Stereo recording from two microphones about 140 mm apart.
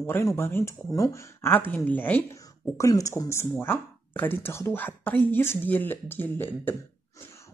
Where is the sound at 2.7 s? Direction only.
25° left (ahead or behind).